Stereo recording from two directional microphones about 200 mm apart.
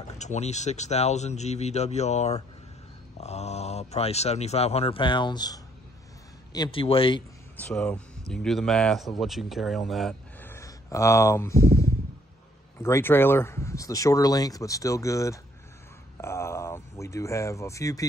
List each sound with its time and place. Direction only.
0.2 s speech: 35° left (ahead or behind)
7.5 s speech: 5° left (ahead or behind)
16.2 s a sound: 15° left (ahead or behind)